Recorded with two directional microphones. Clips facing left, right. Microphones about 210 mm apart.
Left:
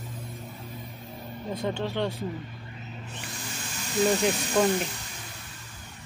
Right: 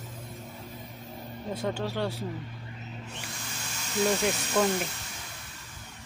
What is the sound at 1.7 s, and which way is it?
Speech, 5° right (ahead or behind).